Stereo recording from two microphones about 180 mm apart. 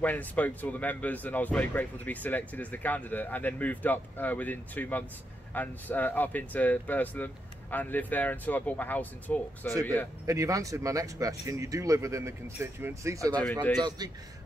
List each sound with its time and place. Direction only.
0.0 s speech: 10° left (ahead or behind)
10.2 s a man's voice: 20° right (ahead or behind)